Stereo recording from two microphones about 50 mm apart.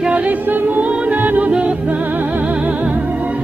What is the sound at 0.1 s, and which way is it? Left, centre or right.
Music, right.